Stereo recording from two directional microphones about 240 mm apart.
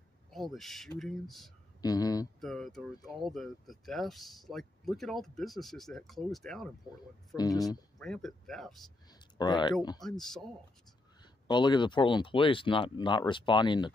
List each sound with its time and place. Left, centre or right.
0.3 s speech: centre
1.8 s speech: centre
2.4 s speech: centre
7.3 s speech: centre
8.0 s speech: centre
9.4 s speech: centre
10.0 s speech: centre
11.4 s speech: centre